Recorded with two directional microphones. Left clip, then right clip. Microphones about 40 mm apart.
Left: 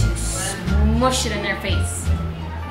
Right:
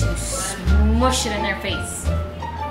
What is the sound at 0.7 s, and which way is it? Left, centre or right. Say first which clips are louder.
Music: even; centre.